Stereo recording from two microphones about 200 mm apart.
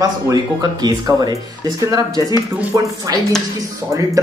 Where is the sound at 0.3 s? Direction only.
20° right (ahead or behind).